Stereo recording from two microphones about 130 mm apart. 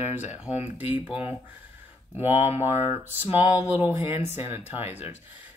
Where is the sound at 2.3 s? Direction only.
50° left (ahead or behind).